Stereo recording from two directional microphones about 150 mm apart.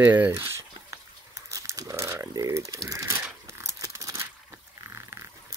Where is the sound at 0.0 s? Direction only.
15° right (ahead or behind).